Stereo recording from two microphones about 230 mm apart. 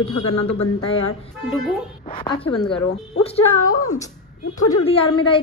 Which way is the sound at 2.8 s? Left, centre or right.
Left.